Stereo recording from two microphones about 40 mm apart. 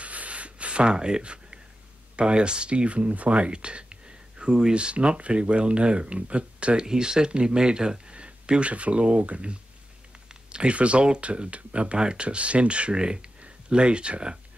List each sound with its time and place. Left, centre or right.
0.0 s a sound: right
2.1 s speech: right
8.1 s speech: right